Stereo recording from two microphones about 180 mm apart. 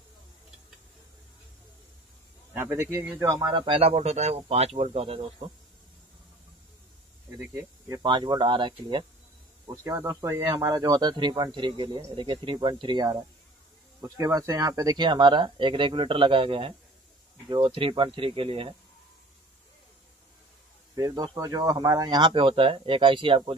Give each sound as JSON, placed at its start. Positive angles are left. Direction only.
{"t": 2.5, "sound": "a man's voice", "side_deg": -15}
{"t": 3.4, "sound": "speech", "side_deg": -30}
{"t": 7.9, "sound": "speech", "side_deg": -25}
{"t": 20.9, "sound": "speech", "side_deg": -20}